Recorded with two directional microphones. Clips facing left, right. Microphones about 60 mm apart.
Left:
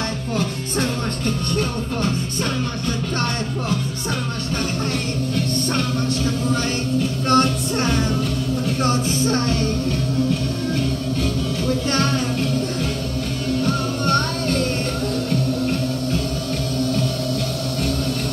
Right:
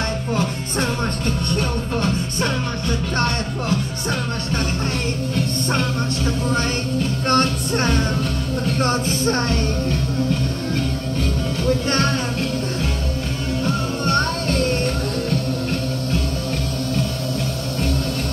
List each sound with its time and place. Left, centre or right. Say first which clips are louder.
7.2 s music: left 1 dB; right
11.9 s music: even; right
14.0 s music: even; right